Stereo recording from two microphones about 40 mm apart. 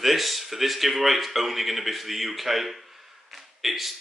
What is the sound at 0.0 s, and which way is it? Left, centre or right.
A man's voice, centre.